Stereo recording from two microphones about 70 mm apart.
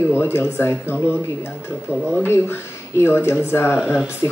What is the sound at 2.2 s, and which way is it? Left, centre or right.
A woman's voice, left.